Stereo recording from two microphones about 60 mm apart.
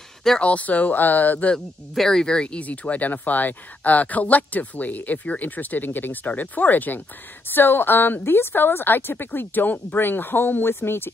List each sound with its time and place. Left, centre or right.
0.4 s speech: left
2.0 s a woman's voice: centre; by 11.1 s left